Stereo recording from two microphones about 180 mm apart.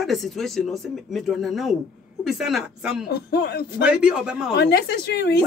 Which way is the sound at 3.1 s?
65° left (ahead or behind).